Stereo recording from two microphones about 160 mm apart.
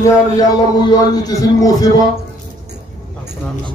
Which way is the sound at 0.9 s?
20° left (ahead or behind).